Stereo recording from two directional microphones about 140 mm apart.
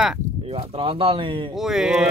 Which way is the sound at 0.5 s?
40° right (ahead or behind).